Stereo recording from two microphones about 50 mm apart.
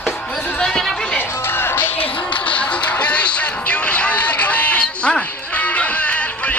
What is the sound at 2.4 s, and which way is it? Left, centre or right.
Music, left.